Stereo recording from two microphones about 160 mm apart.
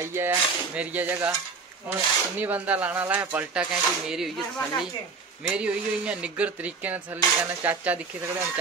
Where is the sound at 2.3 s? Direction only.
10° right (ahead or behind).